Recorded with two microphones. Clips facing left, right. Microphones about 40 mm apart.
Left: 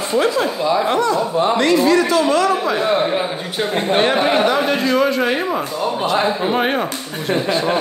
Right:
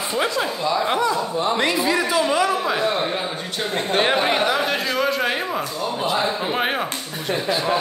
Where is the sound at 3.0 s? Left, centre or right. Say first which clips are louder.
Left 5 dB; centre.